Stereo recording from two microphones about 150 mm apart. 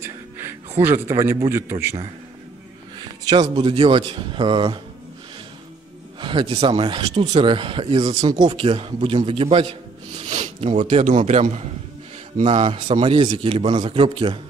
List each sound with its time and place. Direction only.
0.0 s music: 15° right (ahead or behind)
0.8 s a man's voice: 15° right (ahead or behind)
3.0 s a sound: 30° right (ahead or behind)
3.4 s a man's voice: 40° right (ahead or behind)
6.2 s a man's voice: 30° right (ahead or behind); by 12.6 s 50° right (ahead or behind)
13.0 s a man's voice: 40° right (ahead or behind)